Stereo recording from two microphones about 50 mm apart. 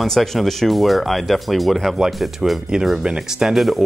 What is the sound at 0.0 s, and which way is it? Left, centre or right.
Speech, centre.